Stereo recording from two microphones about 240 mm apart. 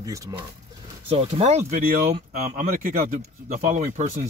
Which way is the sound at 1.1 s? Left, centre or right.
Right.